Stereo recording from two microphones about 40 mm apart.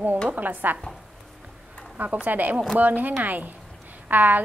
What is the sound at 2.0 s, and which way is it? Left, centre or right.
A woman's voice, right.